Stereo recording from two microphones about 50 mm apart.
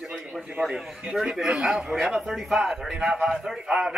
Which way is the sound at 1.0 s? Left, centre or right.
Centre.